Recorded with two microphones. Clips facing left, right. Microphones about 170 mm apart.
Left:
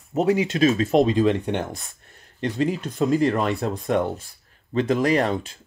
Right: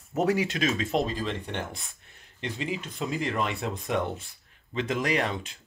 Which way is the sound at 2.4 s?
45° left (ahead or behind).